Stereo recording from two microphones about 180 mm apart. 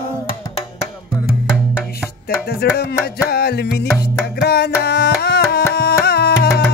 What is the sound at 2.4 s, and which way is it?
Music, 60° left (ahead or behind).